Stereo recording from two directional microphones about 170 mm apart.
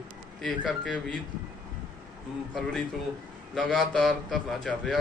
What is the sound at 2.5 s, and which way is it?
Speech, 5° left (ahead or behind).